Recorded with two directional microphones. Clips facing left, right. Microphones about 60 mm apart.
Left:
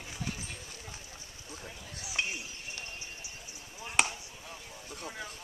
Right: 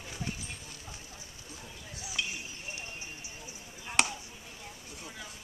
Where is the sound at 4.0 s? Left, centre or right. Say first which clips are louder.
Even; centre.